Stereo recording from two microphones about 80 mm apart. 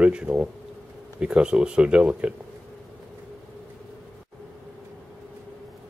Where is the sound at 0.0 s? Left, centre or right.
Centre.